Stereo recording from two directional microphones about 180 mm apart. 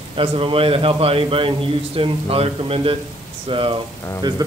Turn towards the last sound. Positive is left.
turn(degrees=-25)  # may be behind; listen again after turning